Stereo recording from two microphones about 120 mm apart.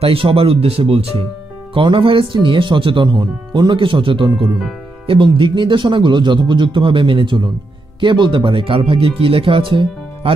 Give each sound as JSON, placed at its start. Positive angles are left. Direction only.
{"t": 0.0, "sound": "speech", "side_deg": -50}